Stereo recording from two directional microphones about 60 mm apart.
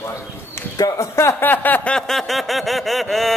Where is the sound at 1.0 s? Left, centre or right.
Left.